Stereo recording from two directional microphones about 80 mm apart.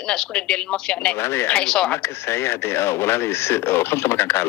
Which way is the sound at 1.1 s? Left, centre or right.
Left.